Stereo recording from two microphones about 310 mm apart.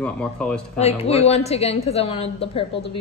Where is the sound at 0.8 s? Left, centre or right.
Centre.